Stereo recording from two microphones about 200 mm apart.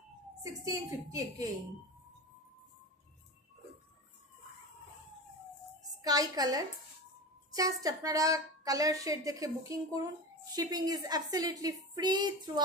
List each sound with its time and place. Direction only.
0.4 s a woman's voice: 15° right (ahead or behind)
6.0 s a woman's voice: 20° right (ahead or behind)